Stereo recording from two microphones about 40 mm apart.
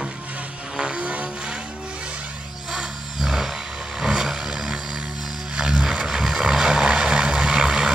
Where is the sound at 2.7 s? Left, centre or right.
Centre.